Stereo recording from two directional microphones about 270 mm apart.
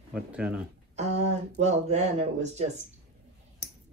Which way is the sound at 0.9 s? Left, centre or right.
Right.